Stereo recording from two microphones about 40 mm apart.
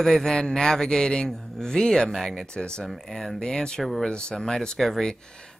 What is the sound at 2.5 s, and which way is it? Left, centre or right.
Speech, left.